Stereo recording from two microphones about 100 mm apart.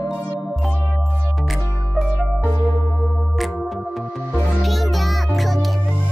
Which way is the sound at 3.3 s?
Centre (ahead or behind).